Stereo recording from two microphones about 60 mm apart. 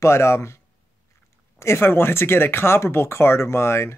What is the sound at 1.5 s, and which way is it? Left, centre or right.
Speech, left.